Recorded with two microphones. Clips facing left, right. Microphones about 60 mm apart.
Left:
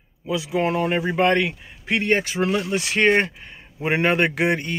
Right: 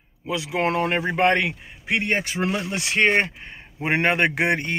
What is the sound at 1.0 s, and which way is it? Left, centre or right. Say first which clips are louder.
Speech: left 1 dB; right.